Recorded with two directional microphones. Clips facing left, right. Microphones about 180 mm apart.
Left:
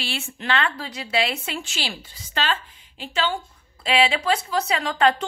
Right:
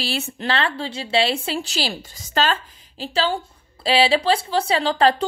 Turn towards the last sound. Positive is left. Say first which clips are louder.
# right 3 dB
turn(degrees=-35)  # may be behind; listen again after turning